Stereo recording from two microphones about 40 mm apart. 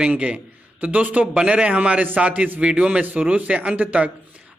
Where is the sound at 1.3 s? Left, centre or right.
Right.